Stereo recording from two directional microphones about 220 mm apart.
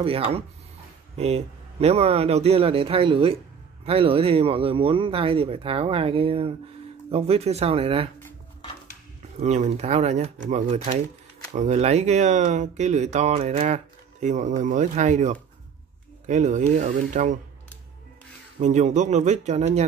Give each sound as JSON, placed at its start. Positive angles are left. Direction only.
{"t": 0.0, "sound": "a man's voice", "side_deg": -25}
{"t": 9.4, "sound": "speech", "side_deg": -30}
{"t": 18.6, "sound": "speech", "side_deg": -30}